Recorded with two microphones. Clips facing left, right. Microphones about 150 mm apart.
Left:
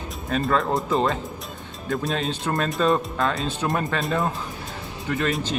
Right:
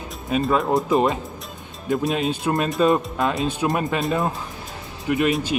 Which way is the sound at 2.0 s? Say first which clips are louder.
Right 3 dB; centre (ahead or behind).